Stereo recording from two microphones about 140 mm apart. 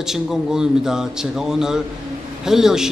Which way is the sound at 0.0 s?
5° right (ahead or behind).